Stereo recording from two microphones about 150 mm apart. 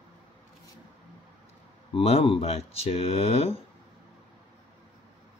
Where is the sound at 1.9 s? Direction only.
40° left (ahead or behind).